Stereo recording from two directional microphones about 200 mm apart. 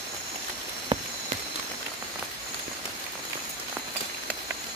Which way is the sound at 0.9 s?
20° right (ahead or behind).